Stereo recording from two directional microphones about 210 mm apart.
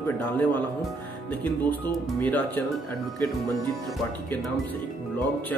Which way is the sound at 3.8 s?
Centre (ahead or behind).